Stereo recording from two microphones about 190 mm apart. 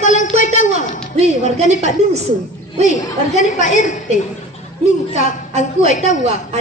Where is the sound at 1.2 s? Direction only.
35° right (ahead or behind).